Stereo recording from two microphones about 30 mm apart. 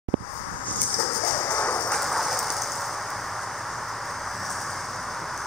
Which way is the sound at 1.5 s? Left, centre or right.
Left.